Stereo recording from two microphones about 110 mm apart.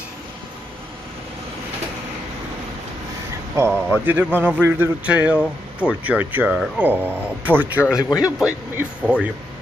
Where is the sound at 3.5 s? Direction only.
20° right (ahead or behind).